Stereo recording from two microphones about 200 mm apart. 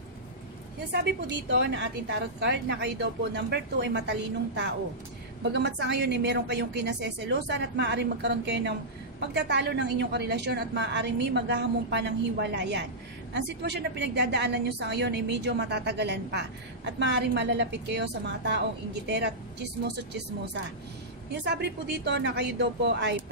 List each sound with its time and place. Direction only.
0.9 s a woman's voice: 55° right (ahead or behind)
21.3 s a woman's voice: 60° right (ahead or behind)